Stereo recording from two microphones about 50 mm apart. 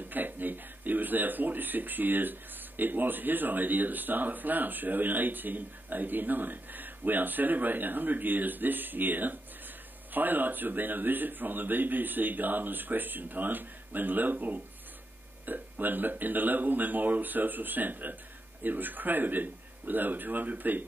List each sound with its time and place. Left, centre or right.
0.1 s speech: right